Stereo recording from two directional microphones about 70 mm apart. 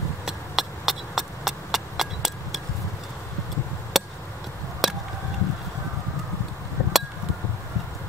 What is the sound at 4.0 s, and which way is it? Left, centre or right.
Chop, centre.